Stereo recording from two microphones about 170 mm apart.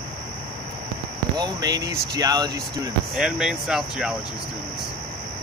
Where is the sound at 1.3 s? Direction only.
25° right (ahead or behind).